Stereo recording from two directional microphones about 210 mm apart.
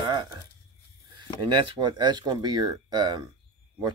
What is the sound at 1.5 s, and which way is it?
Speech, 20° right (ahead or behind).